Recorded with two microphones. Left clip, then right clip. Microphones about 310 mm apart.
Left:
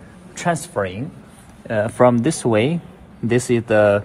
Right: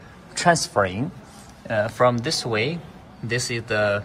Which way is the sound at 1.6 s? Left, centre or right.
Centre.